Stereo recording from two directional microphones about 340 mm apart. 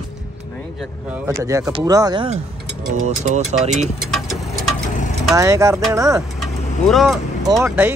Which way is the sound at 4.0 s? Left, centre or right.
Centre.